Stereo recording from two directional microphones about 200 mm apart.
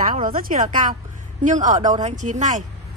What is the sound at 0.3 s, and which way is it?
A woman's voice, 45° right (ahead or behind).